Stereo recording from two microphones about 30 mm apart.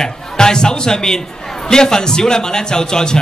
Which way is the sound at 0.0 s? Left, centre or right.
Left.